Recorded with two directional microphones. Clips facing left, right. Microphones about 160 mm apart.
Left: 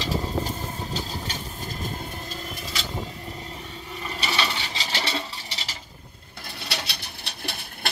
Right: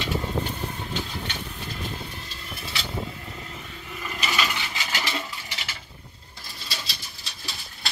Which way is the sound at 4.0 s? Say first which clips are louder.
Even; 35° left (ahead or behind).